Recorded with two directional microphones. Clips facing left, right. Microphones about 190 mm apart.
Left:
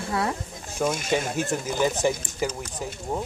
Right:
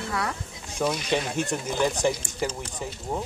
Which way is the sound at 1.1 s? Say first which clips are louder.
Left 1 dB; centre (ahead or behind).